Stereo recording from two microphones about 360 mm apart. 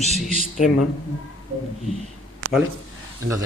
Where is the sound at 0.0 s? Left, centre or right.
Centre.